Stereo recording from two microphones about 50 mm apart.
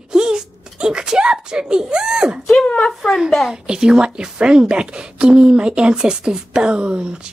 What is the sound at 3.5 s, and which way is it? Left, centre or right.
A woman's voice, centre.